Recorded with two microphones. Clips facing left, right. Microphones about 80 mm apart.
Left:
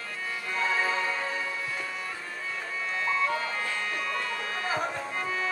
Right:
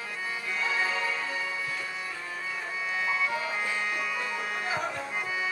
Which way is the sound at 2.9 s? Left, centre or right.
Centre.